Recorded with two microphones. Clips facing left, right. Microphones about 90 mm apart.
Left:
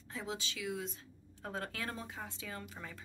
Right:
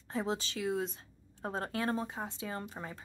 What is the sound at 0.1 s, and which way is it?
A woman's voice, 40° right (ahead or behind).